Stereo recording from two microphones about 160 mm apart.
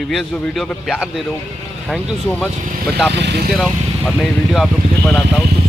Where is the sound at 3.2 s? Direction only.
90° right.